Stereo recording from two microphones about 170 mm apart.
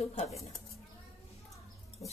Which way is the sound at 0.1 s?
45° left (ahead or behind).